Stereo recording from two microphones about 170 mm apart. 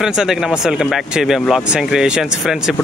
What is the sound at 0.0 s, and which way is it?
Speech, 5° right (ahead or behind).